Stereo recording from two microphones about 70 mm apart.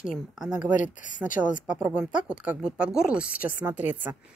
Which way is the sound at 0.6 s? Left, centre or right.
Centre.